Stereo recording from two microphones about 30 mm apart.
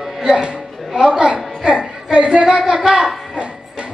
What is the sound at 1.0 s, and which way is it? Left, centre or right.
Speech, right.